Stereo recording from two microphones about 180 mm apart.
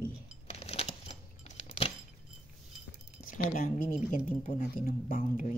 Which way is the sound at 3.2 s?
50° left (ahead or behind).